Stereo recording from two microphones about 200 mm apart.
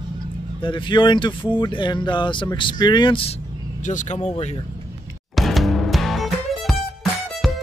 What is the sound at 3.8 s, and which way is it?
Speech, 40° left (ahead or behind).